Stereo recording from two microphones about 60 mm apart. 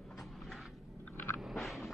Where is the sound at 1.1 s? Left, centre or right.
Left.